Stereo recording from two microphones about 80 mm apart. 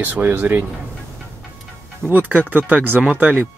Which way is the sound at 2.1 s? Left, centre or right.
Right.